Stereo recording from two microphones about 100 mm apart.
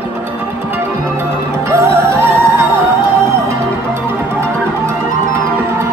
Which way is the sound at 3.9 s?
25° right (ahead or behind).